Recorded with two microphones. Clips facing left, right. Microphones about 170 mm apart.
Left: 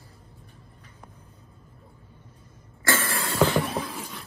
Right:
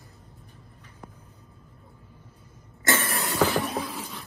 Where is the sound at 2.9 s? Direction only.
25° right (ahead or behind).